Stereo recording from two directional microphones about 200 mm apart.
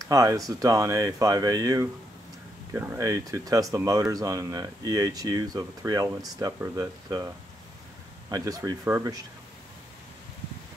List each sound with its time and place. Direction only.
0.0 s speech: 15° right (ahead or behind)
8.3 s speech: 20° right (ahead or behind)